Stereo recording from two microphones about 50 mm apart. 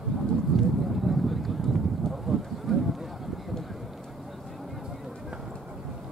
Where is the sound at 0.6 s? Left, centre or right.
Centre.